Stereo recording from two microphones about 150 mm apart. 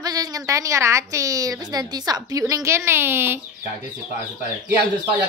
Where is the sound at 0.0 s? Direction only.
25° right (ahead or behind).